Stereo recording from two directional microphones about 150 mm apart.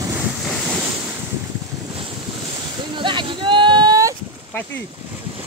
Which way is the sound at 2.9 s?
35° right (ahead or behind).